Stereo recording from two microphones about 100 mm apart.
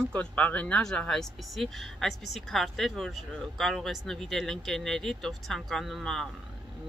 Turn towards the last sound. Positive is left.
turn(degrees=5)  # may be behind; listen again after turning